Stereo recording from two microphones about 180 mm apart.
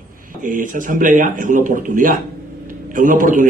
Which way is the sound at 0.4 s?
50° right (ahead or behind).